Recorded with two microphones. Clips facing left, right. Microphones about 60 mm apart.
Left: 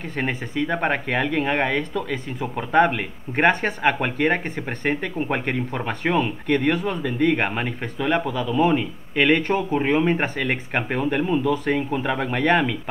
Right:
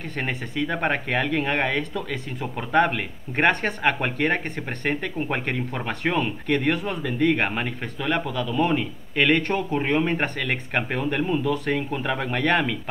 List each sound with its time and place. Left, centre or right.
0.1 s speech: centre